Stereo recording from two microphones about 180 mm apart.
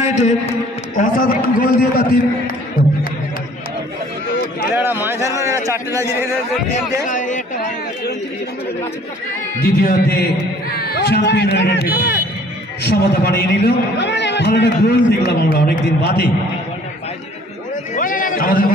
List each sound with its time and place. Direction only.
0.0 s a man's voice: 40° left (ahead or behind)
1.6 s a man's voice: 55° left (ahead or behind)
4.7 s a man's voice: 10° right (ahead or behind)
7.1 s a man's voice: 45° left (ahead or behind)
9.6 s a man's voice: 60° left (ahead or behind)
17.9 s a sound: 50° left (ahead or behind)